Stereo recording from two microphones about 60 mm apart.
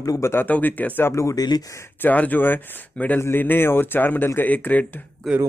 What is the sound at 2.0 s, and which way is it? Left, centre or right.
Speech, left.